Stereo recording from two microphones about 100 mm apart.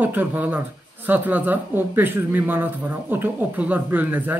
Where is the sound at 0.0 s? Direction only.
20° right (ahead or behind).